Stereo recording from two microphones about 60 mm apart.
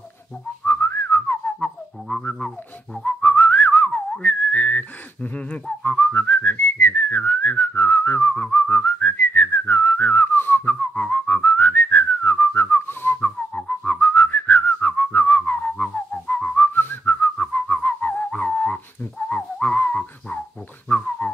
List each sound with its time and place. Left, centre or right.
0.7 s whistling: left
1.2 s whistling: left
3.0 s whistling: left
20.9 s a sound: left